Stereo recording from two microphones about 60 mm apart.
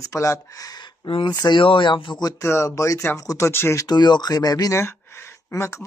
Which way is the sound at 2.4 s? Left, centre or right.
Left.